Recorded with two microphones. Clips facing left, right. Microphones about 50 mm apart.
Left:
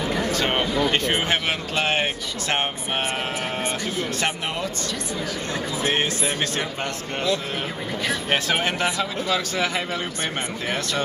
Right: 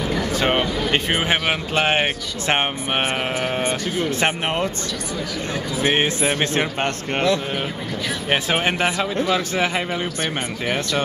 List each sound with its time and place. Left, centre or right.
0.3 s a sound: centre
0.9 s speech: centre
5.8 s speech: right
6.8 s a man's voice: right
8.3 s speech: centre